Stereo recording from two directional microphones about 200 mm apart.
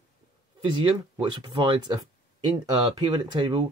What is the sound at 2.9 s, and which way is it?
Speech, 20° right (ahead or behind).